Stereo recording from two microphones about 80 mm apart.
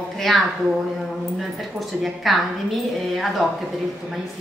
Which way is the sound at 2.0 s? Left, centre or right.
Centre.